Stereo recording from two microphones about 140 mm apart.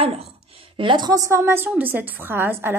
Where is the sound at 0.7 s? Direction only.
35° right (ahead or behind).